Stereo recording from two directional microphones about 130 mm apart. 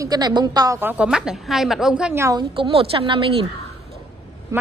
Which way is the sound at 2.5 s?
45° right (ahead or behind).